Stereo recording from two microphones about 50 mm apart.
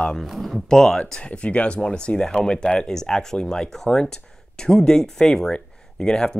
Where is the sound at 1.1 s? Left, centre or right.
Left.